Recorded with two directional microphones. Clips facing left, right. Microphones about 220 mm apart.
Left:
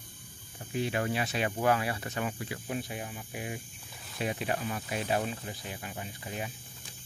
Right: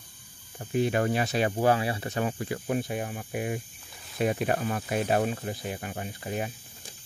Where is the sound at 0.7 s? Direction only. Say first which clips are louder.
Right 6 dB; 50° right (ahead or behind).